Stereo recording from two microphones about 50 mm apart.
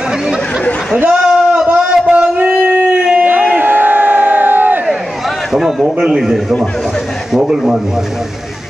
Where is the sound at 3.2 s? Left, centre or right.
Right.